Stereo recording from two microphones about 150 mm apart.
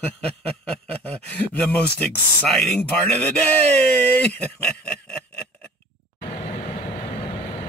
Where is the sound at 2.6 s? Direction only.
10° left (ahead or behind).